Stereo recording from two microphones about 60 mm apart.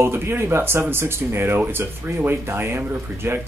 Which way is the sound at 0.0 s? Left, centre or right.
Right.